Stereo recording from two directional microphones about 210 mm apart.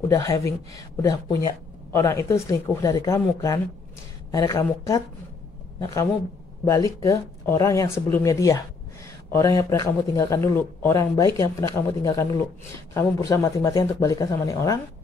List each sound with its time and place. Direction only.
0.1 s speech: 15° left (ahead or behind)
6.6 s speech: 15° left (ahead or behind)